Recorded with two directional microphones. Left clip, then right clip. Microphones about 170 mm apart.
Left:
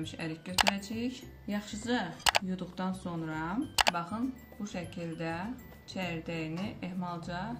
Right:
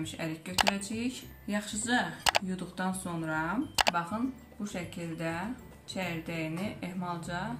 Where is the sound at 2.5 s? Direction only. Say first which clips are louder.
Right 2 dB; 20° left (ahead or behind).